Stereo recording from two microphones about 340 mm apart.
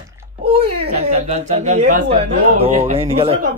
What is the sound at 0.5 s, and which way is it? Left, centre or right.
A child's voice, centre.